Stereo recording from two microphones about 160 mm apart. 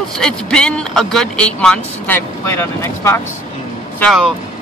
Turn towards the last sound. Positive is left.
turn(degrees=0)  # may be behind; listen again after turning